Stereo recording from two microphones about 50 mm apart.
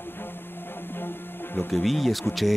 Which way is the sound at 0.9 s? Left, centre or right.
Left.